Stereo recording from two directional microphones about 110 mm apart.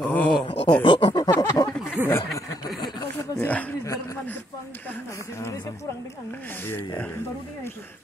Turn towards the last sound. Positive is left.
turn(degrees=20)  # may be behind; listen again after turning